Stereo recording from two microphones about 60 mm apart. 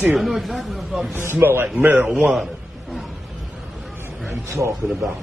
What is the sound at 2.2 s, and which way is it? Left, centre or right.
Speech, centre.